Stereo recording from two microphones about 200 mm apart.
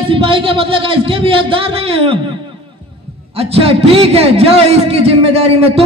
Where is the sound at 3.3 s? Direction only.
30° right (ahead or behind).